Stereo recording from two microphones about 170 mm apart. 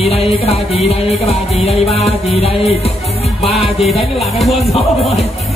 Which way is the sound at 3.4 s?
Centre (ahead or behind).